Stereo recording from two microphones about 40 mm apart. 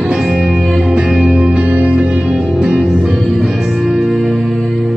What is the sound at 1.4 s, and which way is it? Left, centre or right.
Music, right.